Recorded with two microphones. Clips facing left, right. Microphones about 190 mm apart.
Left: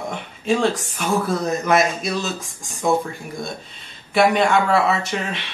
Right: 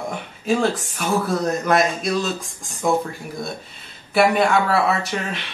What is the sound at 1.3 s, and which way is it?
Speech, 5° left (ahead or behind).